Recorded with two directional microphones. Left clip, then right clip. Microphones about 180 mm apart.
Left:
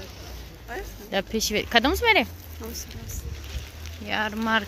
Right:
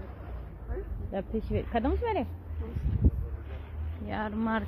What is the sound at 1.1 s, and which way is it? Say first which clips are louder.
Speech: left 8 dB; 20° left (ahead or behind).